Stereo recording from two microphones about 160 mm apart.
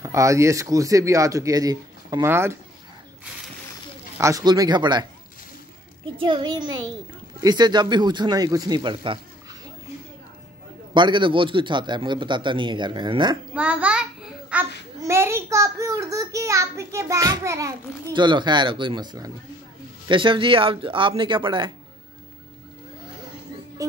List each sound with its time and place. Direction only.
0.0 s speech: 20° right (ahead or behind)
4.2 s speech: 20° right (ahead or behind)
6.1 s speech: 30° right (ahead or behind)
11.0 s speech: 30° right (ahead or behind)
13.6 s a sound: 10° right (ahead or behind)
15.0 s a child's voice: 15° right (ahead or behind)
23.8 s music: 20° right (ahead or behind)